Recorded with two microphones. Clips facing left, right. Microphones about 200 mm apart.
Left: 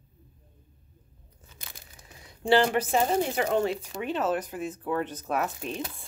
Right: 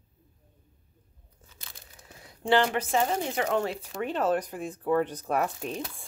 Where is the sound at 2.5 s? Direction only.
35° left (ahead or behind).